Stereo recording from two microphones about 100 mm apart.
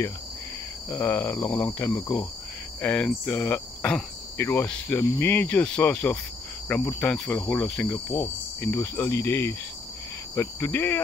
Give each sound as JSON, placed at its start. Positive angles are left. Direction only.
{"t": 0.8, "sound": "cricket", "side_deg": 20}
{"t": 4.6, "sound": "speech", "side_deg": 20}
{"t": 7.9, "sound": "cricket", "side_deg": 20}